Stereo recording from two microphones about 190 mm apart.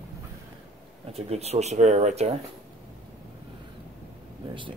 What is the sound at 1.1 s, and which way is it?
Speech, 35° right (ahead or behind).